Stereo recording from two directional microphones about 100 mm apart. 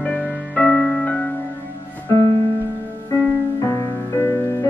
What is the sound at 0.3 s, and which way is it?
Music, 10° left (ahead or behind).